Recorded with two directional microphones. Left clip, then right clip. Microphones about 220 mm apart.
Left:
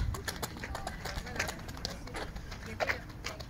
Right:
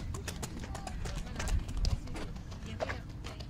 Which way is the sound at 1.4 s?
20° left (ahead or behind).